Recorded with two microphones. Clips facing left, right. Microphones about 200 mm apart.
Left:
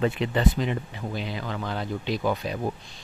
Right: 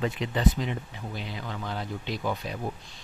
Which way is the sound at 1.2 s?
90° left.